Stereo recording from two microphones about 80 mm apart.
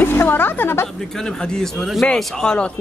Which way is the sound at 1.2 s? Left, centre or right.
Centre.